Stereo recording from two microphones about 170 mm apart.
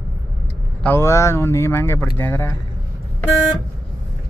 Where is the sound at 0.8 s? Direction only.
15° left (ahead or behind).